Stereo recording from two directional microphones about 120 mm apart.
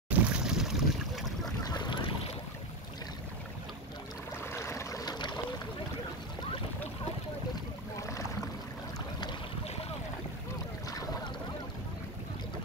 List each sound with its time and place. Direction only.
0.1 s boat: 10° right (ahead or behind)
1.6 s boat: 35° left (ahead or behind)
4.4 s boat: 20° left (ahead or behind)